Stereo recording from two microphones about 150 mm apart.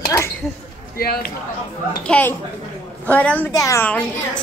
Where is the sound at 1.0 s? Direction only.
90° left.